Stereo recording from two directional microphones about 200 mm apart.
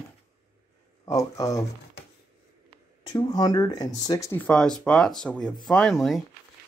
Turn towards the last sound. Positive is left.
turn(degrees=0)  # may be behind; listen again after turning